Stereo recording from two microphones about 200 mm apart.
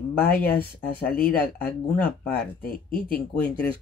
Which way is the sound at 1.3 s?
50° left (ahead or behind).